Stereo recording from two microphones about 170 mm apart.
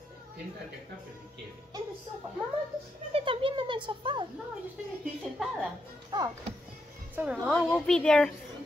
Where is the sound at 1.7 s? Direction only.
20° right (ahead or behind).